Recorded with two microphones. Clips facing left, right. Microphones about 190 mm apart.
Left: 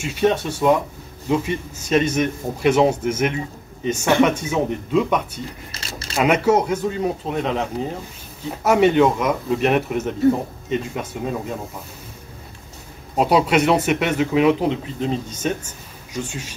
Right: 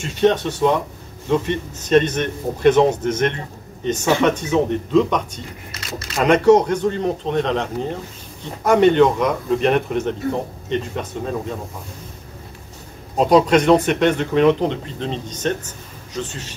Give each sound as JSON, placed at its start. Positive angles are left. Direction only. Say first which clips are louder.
{"t": 0.0, "sound": "speech", "louder": "right 2 dB", "side_deg": 10}
{"t": 5.7, "sound": "keys jangling", "louder": "right 3 dB", "side_deg": 30}
{"t": 6.1, "sound": "speech", "louder": "right 4 dB", "side_deg": 5}
{"t": 11.1, "sound": "speech", "louder": "left 1 dB", "side_deg": 10}
{"t": 13.2, "sound": "speech", "louder": "right 3 dB", "side_deg": 10}